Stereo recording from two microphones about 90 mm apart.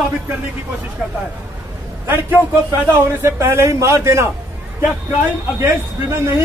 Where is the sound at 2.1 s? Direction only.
25° right (ahead or behind).